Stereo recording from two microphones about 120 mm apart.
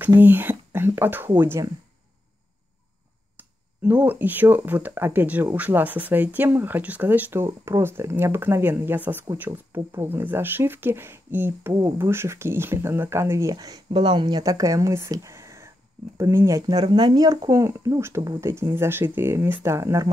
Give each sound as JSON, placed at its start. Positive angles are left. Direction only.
{"t": 0.0, "sound": "speech", "side_deg": -15}
{"t": 3.3, "sound": "speech", "side_deg": -15}